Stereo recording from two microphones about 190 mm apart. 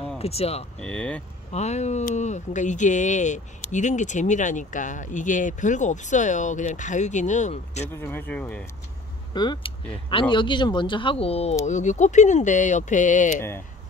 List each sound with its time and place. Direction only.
0.2 s speech: 30° left (ahead or behind)
0.7 s speech: 5° left (ahead or behind)
1.5 s speech: 35° left (ahead or behind)
7.9 s speech: 10° left (ahead or behind)
9.3 s speech: 25° left (ahead or behind); by 13.4 s 40° left (ahead or behind)